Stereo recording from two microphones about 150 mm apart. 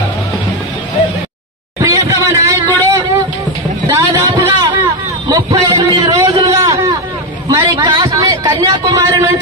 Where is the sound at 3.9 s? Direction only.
25° right (ahead or behind).